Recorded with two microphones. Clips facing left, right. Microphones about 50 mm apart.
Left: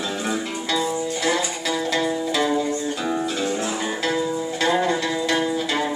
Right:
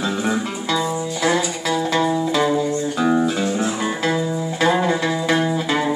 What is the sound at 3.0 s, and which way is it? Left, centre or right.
Music, right.